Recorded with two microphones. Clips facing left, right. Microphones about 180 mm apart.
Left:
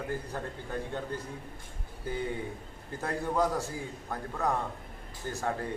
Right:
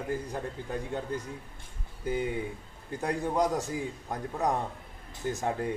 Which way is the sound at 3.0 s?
20° right (ahead or behind).